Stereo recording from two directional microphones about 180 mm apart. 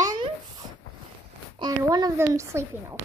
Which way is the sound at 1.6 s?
20° right (ahead or behind).